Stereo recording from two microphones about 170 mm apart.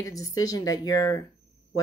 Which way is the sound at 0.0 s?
20° left (ahead or behind).